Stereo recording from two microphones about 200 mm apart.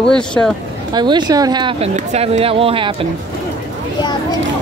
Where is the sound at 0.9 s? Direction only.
20° right (ahead or behind).